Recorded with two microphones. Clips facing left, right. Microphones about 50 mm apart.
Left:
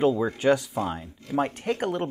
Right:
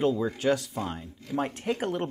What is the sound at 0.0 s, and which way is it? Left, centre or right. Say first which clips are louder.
Speech: left 3 dB; centre.